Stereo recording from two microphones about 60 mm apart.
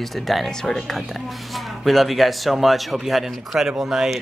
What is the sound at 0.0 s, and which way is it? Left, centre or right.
Speech, centre.